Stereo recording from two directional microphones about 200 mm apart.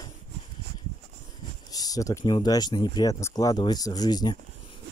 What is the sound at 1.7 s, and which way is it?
Speech, 20° left (ahead or behind).